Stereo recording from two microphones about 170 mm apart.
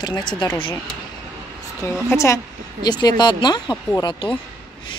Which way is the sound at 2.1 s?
15° left (ahead or behind).